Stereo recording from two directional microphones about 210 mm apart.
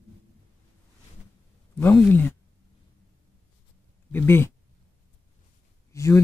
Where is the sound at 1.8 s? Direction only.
10° left (ahead or behind).